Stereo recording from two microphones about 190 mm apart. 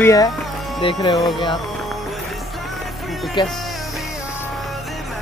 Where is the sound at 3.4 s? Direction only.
25° left (ahead or behind).